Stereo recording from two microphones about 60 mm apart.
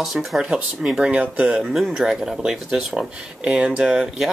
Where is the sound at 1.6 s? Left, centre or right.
Centre.